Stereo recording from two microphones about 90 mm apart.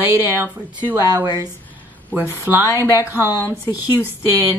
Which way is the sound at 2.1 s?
30° right (ahead or behind).